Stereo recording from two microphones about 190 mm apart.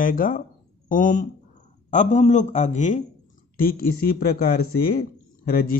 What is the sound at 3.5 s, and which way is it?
A man's voice, 50° left (ahead or behind).